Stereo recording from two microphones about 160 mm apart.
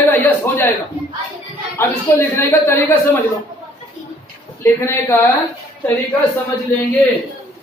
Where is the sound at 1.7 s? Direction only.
20° left (ahead or behind).